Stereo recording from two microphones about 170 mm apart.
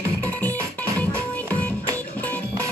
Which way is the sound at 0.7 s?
10° left (ahead or behind).